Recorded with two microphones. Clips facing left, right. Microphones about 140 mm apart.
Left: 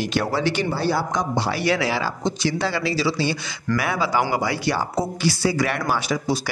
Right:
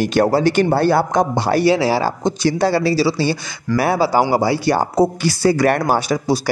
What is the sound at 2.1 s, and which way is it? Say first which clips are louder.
Speech: right 6 dB; 45° right (ahead or behind).